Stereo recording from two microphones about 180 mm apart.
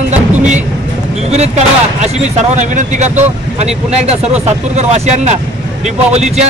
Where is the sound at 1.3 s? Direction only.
40° right (ahead or behind).